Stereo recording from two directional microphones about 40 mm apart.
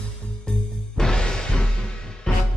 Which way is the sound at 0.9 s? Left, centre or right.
Centre.